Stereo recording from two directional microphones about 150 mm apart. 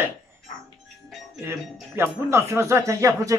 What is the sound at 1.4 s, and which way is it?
Speech, 15° right (ahead or behind).